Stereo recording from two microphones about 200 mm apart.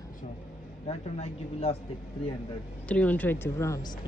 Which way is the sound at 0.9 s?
30° left (ahead or behind).